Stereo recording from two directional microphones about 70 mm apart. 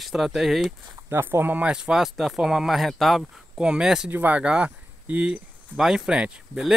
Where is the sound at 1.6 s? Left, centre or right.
Centre.